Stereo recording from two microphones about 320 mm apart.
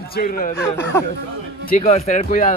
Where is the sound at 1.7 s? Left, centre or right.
Left.